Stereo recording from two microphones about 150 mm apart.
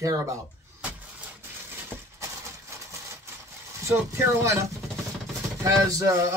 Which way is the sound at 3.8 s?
15° right (ahead or behind).